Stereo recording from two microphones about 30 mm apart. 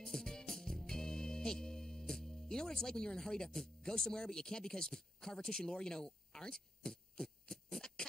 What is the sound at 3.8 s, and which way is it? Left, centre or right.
Speech, left.